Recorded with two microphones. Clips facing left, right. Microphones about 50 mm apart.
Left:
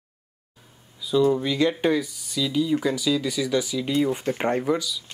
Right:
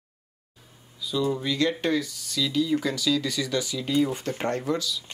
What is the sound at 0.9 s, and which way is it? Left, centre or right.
Speech, centre.